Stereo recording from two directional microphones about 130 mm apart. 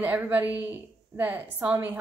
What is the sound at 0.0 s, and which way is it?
A woman's voice, 15° right (ahead or behind).